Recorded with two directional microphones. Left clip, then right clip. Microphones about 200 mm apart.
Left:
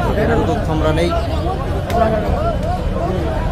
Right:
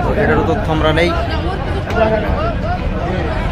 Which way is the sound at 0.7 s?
5° left (ahead or behind).